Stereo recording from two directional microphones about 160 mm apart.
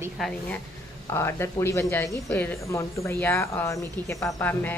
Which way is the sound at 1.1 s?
15° left (ahead or behind).